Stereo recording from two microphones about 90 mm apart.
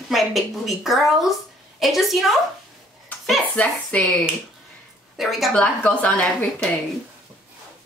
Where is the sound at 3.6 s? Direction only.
15° left (ahead or behind).